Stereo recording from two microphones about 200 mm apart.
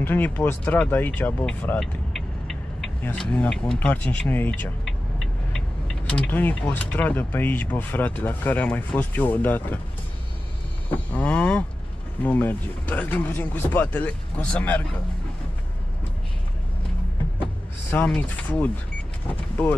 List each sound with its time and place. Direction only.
0.0 s speech: 10° left (ahead or behind)
2.4 s a sound: 5° left (ahead or behind)
6.0 s speech: 5° left (ahead or behind)
10.9 s speech: 10° left (ahead or behind)
17.9 s speech: 5° left (ahead or behind)